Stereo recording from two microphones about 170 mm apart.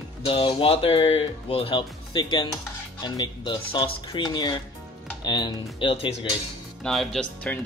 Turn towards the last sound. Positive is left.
turn(degrees=5)  # may be behind; listen again after turning